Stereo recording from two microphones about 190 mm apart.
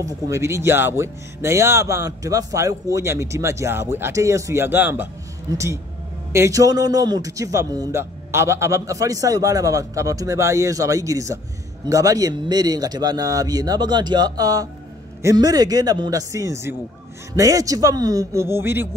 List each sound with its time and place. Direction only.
0.0 s a man's voice: 15° right (ahead or behind)